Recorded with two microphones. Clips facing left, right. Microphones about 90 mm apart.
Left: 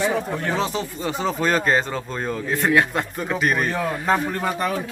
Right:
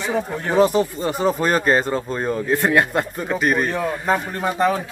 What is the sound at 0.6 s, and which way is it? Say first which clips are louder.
Speech: right 8 dB; 50° right (ahead or behind).